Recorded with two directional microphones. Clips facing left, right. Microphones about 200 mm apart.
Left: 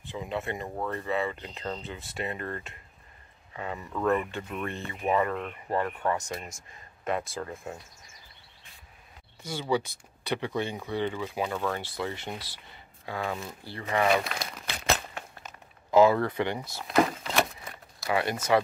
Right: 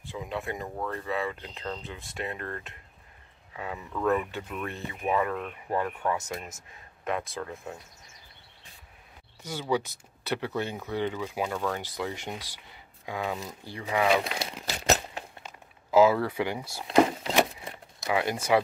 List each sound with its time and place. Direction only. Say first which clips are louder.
0.1 s speech: left 1 dB; centre (ahead or behind)
9.4 s speech: even; 10° right (ahead or behind)
11.5 s speech: even; centre (ahead or behind)
12.0 s speech: even; 10° right (ahead or behind)
13.5 s speech: even; 15° right (ahead or behind)
13.8 s speech: even; 5° right (ahead or behind)
14.1 s speech: right 1 dB; 20° right (ahead or behind)
14.7 s a sound: right 3 dB; 40° right (ahead or behind)
15.1 s a sound: right 1 dB; 25° right (ahead or behind)
15.9 s speech: even; 5° right (ahead or behind)
16.9 s a sound: right 3 dB; 20° right (ahead or behind)
18.1 s speech: even; 10° right (ahead or behind)